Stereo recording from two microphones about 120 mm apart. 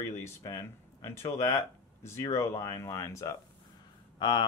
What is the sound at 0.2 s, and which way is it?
Speech, 25° left (ahead or behind).